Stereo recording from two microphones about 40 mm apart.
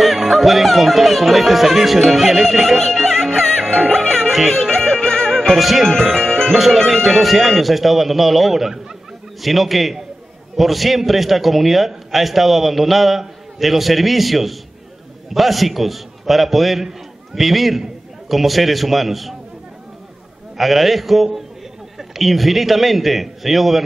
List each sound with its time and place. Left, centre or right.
0.0 s speech: centre
3.0 s music: centre
5.5 s speech: centre
6.1 s speech: centre
6.6 s a man's voice: centre
20.5 s speech: centre